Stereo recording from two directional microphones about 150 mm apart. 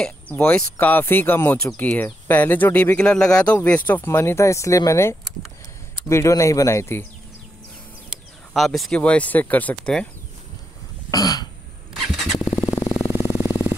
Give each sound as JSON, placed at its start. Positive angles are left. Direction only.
{"t": 0.0, "sound": "speech", "side_deg": 10}
{"t": 8.5, "sound": "speech", "side_deg": 0}
{"t": 11.1, "sound": "throat clearing", "side_deg": 25}
{"t": 11.9, "sound": "vehicle", "side_deg": 0}
{"t": 12.4, "sound": "motorcycle", "side_deg": 40}
{"t": 12.6, "sound": "a sound", "side_deg": 25}
{"t": 13.0, "sound": "vehicle", "side_deg": 20}